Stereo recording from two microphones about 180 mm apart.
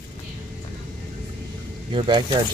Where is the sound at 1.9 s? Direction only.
25° right (ahead or behind).